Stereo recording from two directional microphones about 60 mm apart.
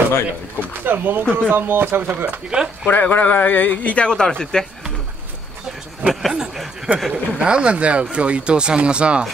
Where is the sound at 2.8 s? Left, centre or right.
Left; by 4.7 s centre.